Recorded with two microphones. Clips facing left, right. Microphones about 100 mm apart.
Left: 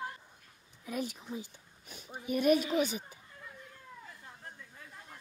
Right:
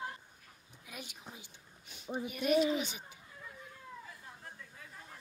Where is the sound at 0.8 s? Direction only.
40° left (ahead or behind).